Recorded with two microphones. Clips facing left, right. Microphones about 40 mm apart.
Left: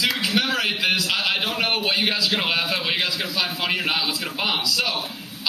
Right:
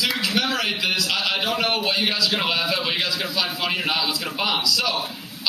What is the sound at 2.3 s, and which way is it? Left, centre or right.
A man's voice, centre.